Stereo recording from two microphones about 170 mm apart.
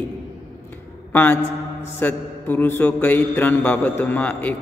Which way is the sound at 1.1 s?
10° left (ahead or behind).